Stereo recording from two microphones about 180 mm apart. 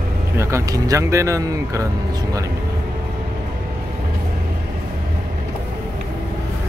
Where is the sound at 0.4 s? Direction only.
15° right (ahead or behind).